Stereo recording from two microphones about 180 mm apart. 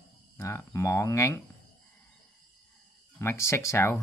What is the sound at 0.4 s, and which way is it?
Speech, 15° left (ahead or behind).